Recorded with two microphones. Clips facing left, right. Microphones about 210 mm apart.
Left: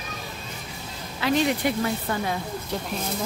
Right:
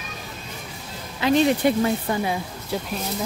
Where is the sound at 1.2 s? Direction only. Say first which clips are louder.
Right 4 dB; 20° right (ahead or behind).